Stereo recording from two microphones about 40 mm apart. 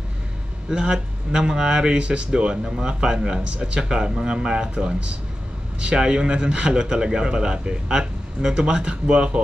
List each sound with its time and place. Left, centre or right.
0.7 s speech: centre
3.3 s speech: right
3.9 s speech: centre